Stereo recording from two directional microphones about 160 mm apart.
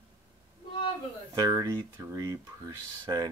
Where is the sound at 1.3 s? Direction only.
20° right (ahead or behind).